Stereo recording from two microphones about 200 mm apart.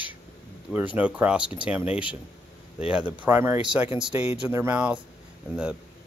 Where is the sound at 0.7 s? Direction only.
5° right (ahead or behind).